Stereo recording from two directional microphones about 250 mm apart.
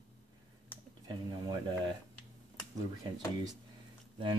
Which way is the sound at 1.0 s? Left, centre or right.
Centre.